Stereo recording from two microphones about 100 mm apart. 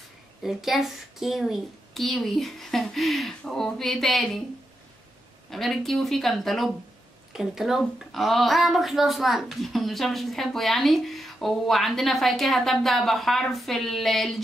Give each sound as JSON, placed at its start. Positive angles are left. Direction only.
{"t": 0.4, "sound": "speech", "side_deg": -5}
{"t": 5.5, "sound": "speech", "side_deg": 0}